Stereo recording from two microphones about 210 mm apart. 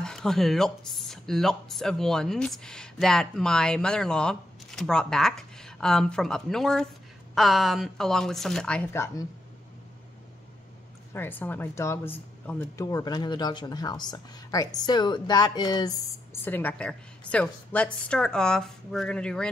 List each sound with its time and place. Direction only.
0.0 s speech: centre (ahead or behind)
11.1 s speech: 10° left (ahead or behind)